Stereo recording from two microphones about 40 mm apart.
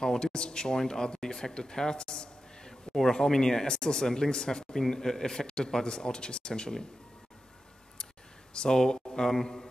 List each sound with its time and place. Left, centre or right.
0.0 s speech: centre
8.5 s speech: centre